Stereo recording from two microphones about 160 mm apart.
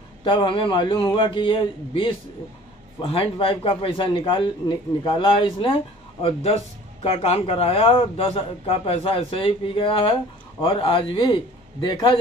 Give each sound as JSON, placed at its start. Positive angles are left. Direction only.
{"t": 0.2, "sound": "a man's voice", "side_deg": 30}
{"t": 7.0, "sound": "a man's voice", "side_deg": 40}